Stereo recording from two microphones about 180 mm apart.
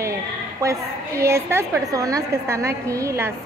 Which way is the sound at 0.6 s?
15° right (ahead or behind).